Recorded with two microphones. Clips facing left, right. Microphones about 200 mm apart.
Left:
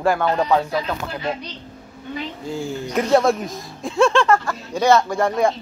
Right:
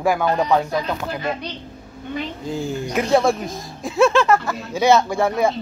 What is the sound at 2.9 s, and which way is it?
Speech, centre (ahead or behind).